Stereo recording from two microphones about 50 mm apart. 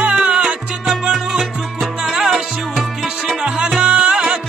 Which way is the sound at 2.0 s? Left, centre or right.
Centre.